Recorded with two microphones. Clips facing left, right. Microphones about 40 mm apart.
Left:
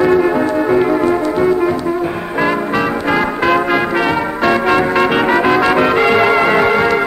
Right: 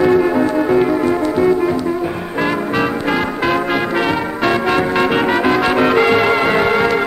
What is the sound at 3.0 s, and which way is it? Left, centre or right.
Brass instrument, centre.